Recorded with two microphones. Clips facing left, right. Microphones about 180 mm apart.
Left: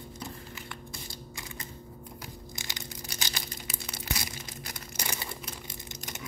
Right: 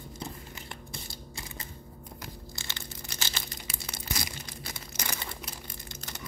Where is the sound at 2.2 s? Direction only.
15° left (ahead or behind).